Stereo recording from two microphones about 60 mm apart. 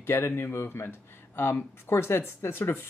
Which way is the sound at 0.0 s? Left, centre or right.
Left.